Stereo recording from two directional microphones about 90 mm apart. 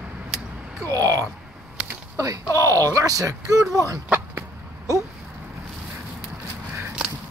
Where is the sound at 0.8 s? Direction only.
40° right (ahead or behind).